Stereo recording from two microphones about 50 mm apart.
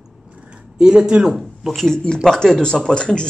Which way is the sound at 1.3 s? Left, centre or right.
Centre.